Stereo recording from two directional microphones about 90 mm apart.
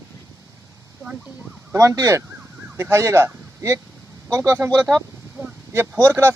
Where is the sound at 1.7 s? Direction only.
35° right (ahead or behind).